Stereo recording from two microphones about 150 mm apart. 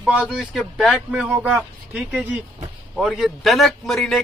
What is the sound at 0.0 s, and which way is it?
A man's voice, 5° right (ahead or behind).